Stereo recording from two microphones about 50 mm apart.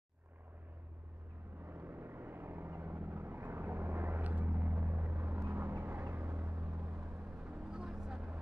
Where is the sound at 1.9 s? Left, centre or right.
Right.